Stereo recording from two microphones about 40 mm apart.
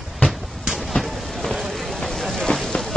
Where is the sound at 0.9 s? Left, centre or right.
Centre.